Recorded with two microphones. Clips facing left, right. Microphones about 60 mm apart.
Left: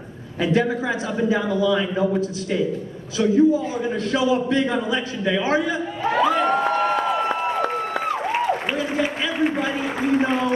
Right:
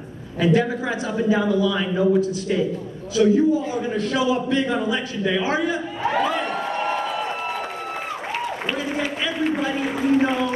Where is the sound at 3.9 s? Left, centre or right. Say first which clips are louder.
Left 1 dB; left.